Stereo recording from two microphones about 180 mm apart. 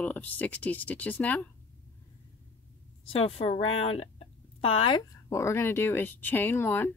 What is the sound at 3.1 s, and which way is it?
A woman's voice, 35° left (ahead or behind).